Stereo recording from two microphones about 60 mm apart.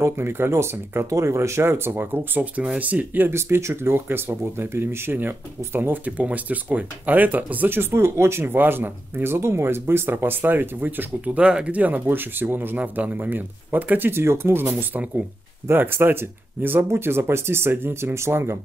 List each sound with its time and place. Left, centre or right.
0.0 s speech: right
2.8 s speech: right
3.3 s speech: right
8.5 s speech: right